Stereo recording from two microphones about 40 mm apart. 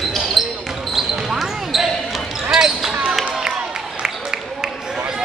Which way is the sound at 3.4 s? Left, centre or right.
Right.